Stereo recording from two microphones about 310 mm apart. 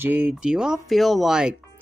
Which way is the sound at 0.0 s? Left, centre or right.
Centre.